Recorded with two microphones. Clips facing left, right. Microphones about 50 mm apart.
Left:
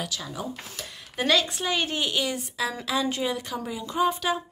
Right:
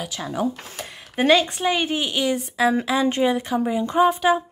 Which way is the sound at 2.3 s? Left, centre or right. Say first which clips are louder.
Right 10 dB; right.